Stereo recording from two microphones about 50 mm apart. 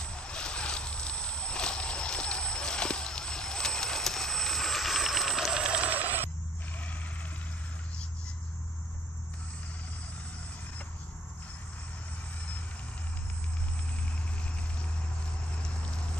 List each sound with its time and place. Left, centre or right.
0.0 s vehicle: centre
5.5 s music: centre
5.9 s telephone bell ringing: right
15.6 s horse: centre